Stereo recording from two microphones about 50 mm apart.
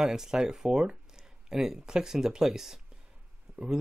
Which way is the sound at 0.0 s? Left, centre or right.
Centre.